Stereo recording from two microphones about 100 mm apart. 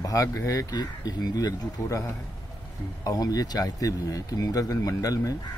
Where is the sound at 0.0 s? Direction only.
35° left (ahead or behind).